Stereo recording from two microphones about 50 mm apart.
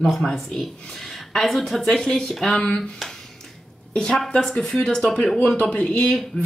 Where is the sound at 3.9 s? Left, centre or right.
Centre.